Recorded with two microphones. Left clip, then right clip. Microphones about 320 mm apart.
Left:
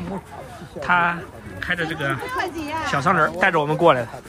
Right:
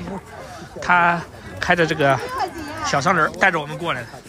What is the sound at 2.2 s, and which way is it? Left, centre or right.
Speech, left.